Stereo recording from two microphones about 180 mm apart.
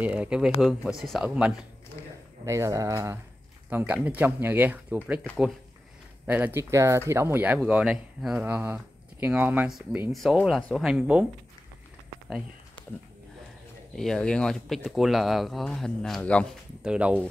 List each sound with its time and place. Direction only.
0.0 s speech: 5° right (ahead or behind)
2.4 s speech: 15° right (ahead or behind)
6.2 s speech: 10° right (ahead or behind)
13.9 s speech: centre (ahead or behind)
16.8 s speech: 5° right (ahead or behind)